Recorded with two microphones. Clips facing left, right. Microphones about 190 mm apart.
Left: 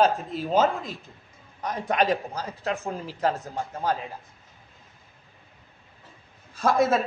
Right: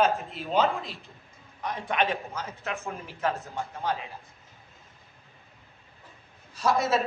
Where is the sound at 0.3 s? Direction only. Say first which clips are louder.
Left 3 dB; 40° left (ahead or behind).